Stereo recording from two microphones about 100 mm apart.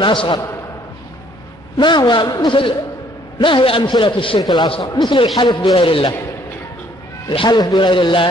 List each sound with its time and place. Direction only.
0.0 s a man's voice: 55° left (ahead or behind)
1.8 s a man's voice: 50° left (ahead or behind)
4.4 s a man's voice: 45° left (ahead or behind); by 6.1 s 65° left (ahead or behind)
7.2 s a man's voice: 50° left (ahead or behind)